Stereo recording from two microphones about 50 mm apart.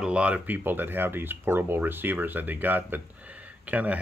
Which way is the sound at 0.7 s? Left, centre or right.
Right.